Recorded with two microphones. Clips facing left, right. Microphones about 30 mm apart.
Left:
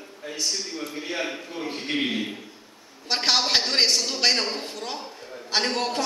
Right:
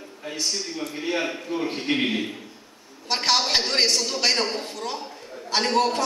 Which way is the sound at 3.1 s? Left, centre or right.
Centre.